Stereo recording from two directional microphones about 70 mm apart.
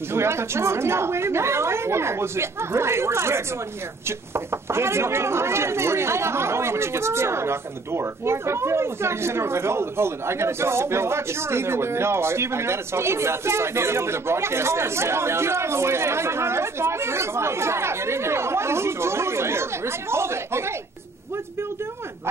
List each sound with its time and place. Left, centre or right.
0.1 s speech: right